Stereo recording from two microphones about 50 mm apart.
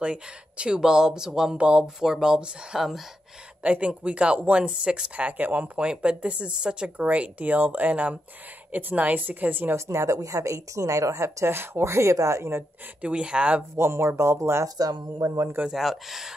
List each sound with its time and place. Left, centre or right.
0.0 s speech: right
1.6 s speech: right
2.0 s speech: centre
3.6 s a woman's voice: right
9.8 s a woman's voice: right
13.0 s speech: right
13.7 s speech: right
15.7 s speech: centre